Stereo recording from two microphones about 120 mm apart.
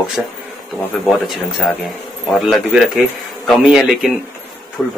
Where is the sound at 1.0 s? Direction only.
Centre (ahead or behind).